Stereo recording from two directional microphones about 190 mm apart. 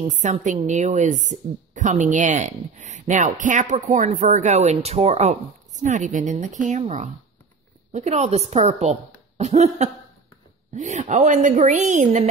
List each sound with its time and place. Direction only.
0.0 s a woman's voice: 40° right (ahead or behind)